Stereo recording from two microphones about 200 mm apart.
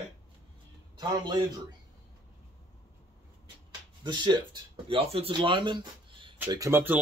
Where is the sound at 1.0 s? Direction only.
20° right (ahead or behind).